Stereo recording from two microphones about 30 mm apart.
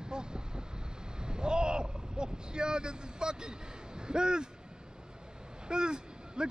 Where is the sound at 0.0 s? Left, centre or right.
Right.